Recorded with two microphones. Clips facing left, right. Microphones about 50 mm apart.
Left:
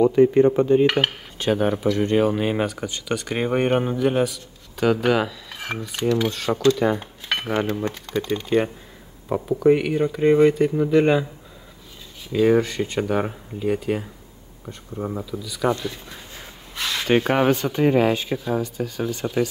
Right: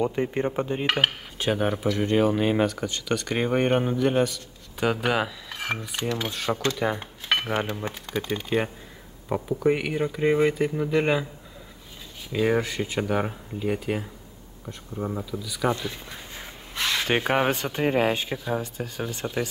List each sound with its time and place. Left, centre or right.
0.0 s speech: centre
0.6 s cutlery: centre
6.2 s speech: centre
9.3 s cutlery: centre
12.3 s cutlery: centre
15.9 s a sound: centre
17.6 s speech: centre
18.3 s cutlery: centre
18.6 s speech: right